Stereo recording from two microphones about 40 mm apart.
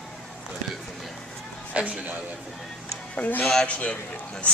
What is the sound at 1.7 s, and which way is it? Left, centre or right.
Speech, right.